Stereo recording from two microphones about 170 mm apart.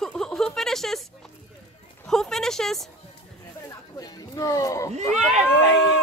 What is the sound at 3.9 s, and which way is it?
Speech, 20° left (ahead or behind).